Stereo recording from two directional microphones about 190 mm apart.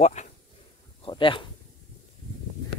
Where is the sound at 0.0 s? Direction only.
35° left (ahead or behind).